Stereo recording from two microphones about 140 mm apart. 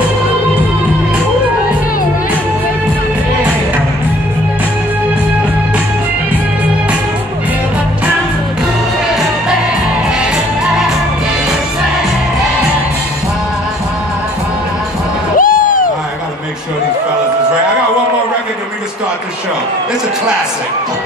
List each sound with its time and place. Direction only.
15.3 s music: 80° left